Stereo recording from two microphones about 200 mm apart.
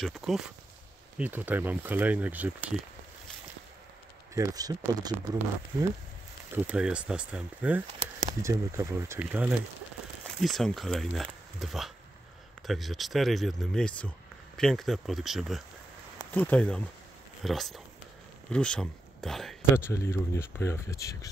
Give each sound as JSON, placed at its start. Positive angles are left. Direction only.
{"t": 0.0, "sound": "speech", "side_deg": 0}
{"t": 4.3, "sound": "speech", "side_deg": -15}
{"t": 6.5, "sound": "speech", "side_deg": -5}
{"t": 19.8, "sound": "speech", "side_deg": 15}